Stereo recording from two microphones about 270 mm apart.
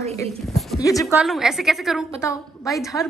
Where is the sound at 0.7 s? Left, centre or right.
Centre.